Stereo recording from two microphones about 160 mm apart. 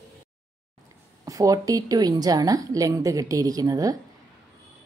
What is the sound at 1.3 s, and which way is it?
A woman's voice, 20° right (ahead or behind).